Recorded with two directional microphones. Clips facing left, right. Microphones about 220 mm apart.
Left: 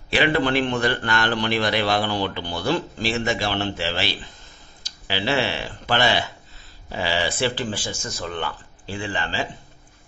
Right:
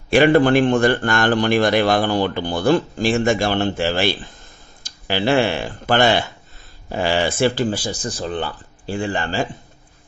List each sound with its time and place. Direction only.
0.1 s a man's voice: 50° right (ahead or behind)